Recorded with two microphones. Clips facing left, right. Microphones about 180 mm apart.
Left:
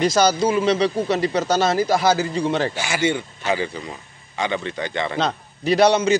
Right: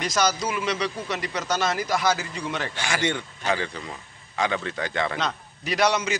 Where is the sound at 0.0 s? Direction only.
30° left (ahead or behind).